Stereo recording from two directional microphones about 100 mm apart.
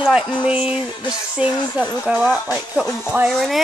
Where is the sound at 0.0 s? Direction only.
10° right (ahead or behind).